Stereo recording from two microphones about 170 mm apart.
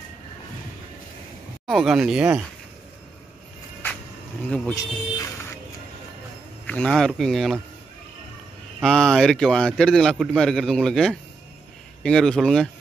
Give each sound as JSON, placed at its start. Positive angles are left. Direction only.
{"t": 1.7, "sound": "a man's voice", "side_deg": 0}
{"t": 4.7, "sound": "speech", "side_deg": 20}
{"t": 6.6, "sound": "a man's voice", "side_deg": 5}
{"t": 8.8, "sound": "a man's voice", "side_deg": 0}